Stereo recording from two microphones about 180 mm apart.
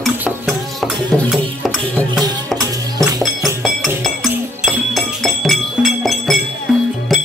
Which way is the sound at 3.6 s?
Centre (ahead or behind).